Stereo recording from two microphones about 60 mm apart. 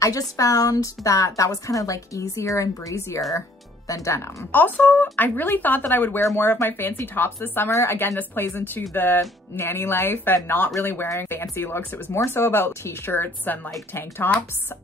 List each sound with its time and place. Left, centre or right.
0.0 s a woman's voice: left
4.5 s speech: left